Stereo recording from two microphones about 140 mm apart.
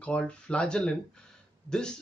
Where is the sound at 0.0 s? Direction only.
10° left (ahead or behind).